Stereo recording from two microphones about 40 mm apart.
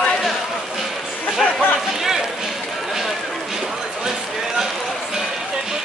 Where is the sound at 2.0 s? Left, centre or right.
Centre.